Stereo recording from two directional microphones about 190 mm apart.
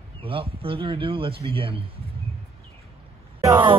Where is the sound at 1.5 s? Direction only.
30° right (ahead or behind).